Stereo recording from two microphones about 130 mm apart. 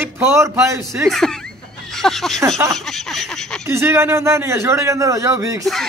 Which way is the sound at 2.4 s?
25° right (ahead or behind).